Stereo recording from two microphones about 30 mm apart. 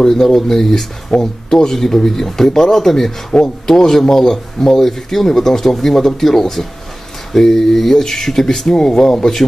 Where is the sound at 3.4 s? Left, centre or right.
Centre.